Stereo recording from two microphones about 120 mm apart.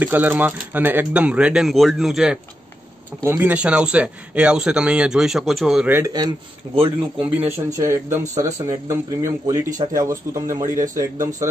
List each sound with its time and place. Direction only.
0.0 s speech: 15° right (ahead or behind)
3.2 s speech: 15° right (ahead or behind); by 5.9 s centre (ahead or behind)
5.9 s speech: 15° right (ahead or behind)
6.1 s speech: 40° right (ahead or behind)
7.4 s speech: 25° right (ahead or behind)